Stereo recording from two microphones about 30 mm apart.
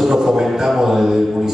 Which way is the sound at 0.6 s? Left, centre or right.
Centre.